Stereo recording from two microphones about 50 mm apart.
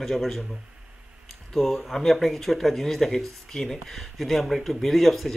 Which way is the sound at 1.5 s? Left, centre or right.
Centre.